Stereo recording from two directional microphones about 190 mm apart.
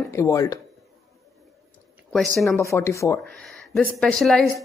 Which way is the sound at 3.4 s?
Centre (ahead or behind).